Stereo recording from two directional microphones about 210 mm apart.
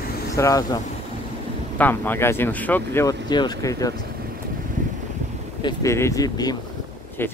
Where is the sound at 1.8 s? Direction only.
10° left (ahead or behind).